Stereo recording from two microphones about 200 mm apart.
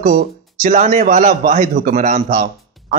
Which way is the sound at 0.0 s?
35° right (ahead or behind).